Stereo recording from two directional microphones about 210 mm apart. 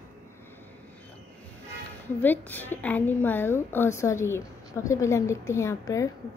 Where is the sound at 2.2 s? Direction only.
10° left (ahead or behind).